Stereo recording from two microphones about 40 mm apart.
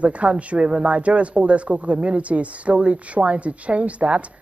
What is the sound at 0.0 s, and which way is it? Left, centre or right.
Speech, right.